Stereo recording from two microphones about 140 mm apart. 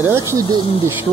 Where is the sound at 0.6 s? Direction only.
40° left (ahead or behind).